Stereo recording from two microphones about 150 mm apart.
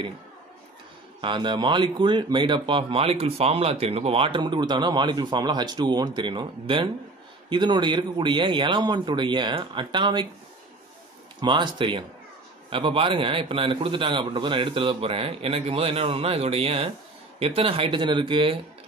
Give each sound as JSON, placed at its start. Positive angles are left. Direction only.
{"t": 1.2, "sound": "speech", "side_deg": -30}
{"t": 11.4, "sound": "speech", "side_deg": -30}